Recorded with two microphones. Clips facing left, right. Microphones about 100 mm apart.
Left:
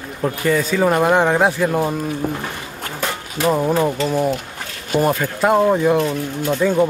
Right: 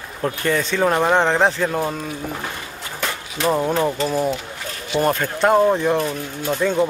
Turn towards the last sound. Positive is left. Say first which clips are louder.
# left 3 dB
turn(degrees=5)  # may be behind; listen again after turning